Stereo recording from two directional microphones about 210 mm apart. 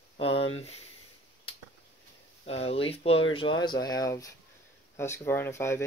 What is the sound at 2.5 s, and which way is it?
Speech, 30° left (ahead or behind).